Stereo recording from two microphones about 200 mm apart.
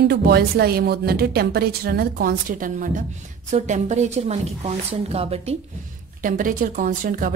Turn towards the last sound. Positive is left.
turn(degrees=-45)  # may be behind; listen again after turning